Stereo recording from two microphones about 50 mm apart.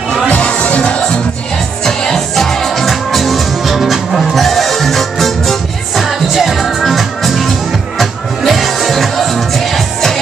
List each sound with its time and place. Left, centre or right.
0.4 s music: left; by 10.2 s centre